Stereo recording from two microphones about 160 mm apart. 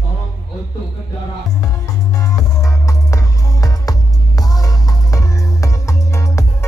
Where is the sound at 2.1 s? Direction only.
20° left (ahead or behind).